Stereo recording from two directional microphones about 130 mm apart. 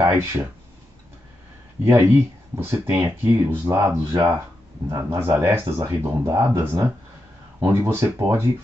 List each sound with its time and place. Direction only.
0.0 s speech: 20° right (ahead or behind)
1.9 s speech: 20° right (ahead or behind)